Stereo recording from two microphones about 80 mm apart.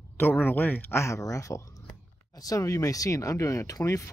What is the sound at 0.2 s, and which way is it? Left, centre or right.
Speech, left.